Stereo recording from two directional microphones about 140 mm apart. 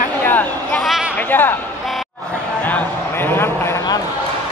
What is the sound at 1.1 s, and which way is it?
Speech, 15° left (ahead or behind).